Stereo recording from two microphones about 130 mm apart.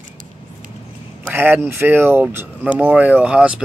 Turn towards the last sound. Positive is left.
turn(degrees=-10)  # may be behind; listen again after turning